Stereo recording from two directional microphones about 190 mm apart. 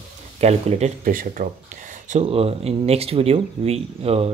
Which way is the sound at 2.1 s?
30° right (ahead or behind).